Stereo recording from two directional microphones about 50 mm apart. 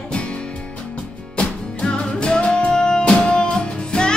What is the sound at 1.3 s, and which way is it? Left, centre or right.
Music, centre.